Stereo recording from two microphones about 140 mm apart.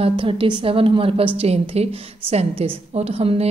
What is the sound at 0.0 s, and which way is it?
A woman's voice, 40° right (ahead or behind).